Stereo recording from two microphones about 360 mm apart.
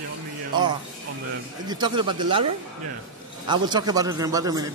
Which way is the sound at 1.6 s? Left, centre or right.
Centre.